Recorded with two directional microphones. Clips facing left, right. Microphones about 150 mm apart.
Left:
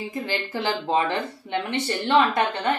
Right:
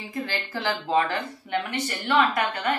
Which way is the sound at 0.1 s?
20° left (ahead or behind).